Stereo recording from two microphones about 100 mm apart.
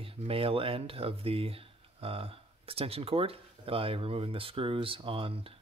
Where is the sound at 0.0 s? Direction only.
70° right (ahead or behind).